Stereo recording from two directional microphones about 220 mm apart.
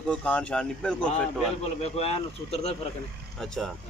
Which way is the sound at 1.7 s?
30° left (ahead or behind).